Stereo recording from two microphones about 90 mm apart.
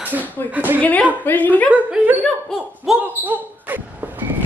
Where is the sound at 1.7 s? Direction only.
15° right (ahead or behind).